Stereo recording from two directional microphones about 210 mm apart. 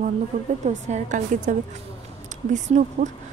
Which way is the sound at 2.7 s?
35° right (ahead or behind).